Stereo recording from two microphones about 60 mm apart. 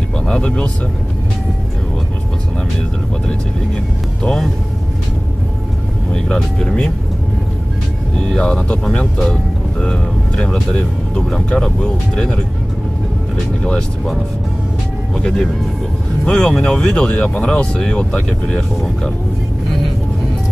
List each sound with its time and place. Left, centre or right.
0.3 s speech: centre
4.2 s speech: centre
6.1 s speech: centre
8.2 s speech: centre
15.1 s speech: centre